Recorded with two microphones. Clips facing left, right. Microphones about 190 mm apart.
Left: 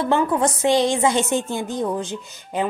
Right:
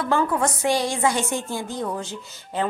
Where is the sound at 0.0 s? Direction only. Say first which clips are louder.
Left 3 dB; 20° left (ahead or behind).